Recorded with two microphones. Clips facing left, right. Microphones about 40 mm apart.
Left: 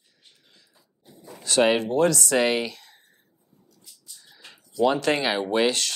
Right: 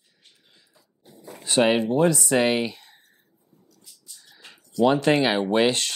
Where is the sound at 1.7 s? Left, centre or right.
Centre.